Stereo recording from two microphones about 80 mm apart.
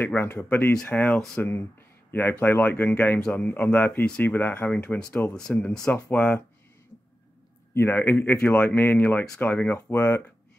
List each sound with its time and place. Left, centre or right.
0.0 s speech: left
2.0 s a sound: left
2.4 s speech: left
4.0 s speech: centre
7.7 s speech: left